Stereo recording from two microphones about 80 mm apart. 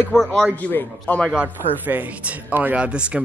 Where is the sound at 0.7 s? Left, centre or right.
Left.